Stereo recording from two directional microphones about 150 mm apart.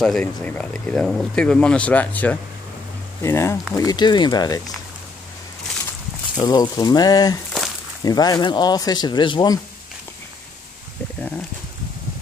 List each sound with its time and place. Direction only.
0.0 s speech: 5° left (ahead or behind); by 4.7 s 25° left (ahead or behind)
6.4 s speech: 25° left (ahead or behind)
7.5 s snake: centre (ahead or behind)
8.0 s speech: 25° left (ahead or behind)